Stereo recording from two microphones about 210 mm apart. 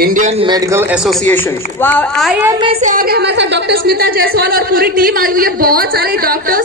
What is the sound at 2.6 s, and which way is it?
A woman's voice, 30° right (ahead or behind).